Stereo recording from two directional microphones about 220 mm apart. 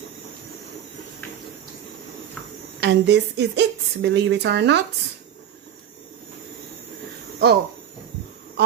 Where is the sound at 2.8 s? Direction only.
50° right (ahead or behind).